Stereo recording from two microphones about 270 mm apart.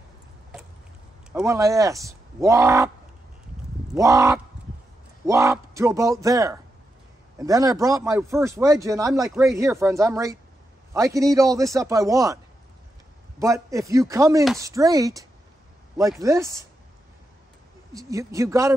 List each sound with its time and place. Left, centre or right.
1.3 s a man's voice: centre
3.9 s a man's voice: centre
4.6 s a sound: centre
5.2 s a man's voice: centre
13.4 s a man's voice: centre
17.9 s a man's voice: centre